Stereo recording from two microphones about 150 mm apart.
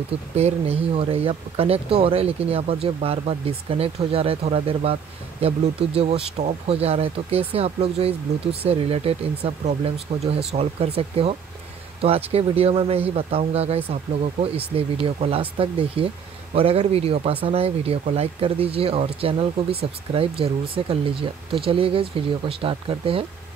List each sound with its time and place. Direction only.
0.4 s speech: 40° right (ahead or behind)